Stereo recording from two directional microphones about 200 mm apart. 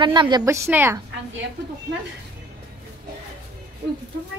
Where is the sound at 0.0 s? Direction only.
25° right (ahead or behind).